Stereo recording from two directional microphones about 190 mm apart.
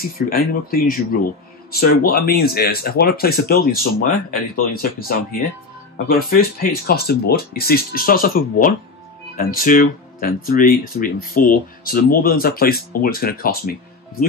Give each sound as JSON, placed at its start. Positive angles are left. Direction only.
{"t": 0.0, "sound": "speech", "side_deg": 50}